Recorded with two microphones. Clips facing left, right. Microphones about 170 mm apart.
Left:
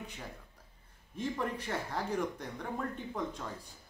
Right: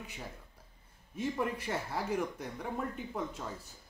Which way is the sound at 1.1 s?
10° right (ahead or behind).